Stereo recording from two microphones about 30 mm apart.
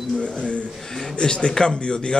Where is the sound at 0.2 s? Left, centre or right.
Left.